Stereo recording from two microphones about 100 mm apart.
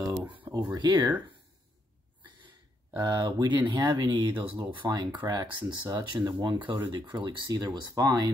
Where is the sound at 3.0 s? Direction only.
45° right (ahead or behind).